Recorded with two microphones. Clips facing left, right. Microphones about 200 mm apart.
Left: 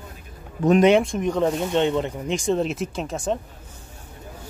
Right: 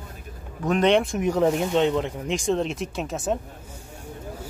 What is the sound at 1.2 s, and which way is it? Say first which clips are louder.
Speech: right 1 dB; 10° right (ahead or behind).